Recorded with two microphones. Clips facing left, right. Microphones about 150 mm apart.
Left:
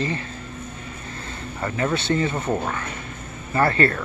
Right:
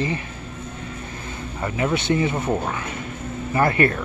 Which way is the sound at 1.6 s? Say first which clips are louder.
Right 1 dB; 15° right (ahead or behind).